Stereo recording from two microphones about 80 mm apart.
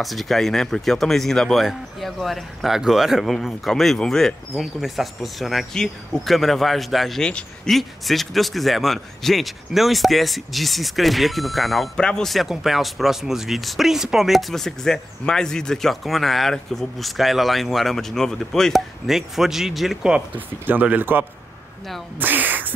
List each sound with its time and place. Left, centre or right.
0.0 s speech: centre
12.0 s speech: centre
12.3 s speech: centre
20.3 s speech: right
22.2 s a sound: right